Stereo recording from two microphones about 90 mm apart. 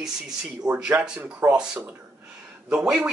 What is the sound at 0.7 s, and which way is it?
Speech, 20° right (ahead or behind).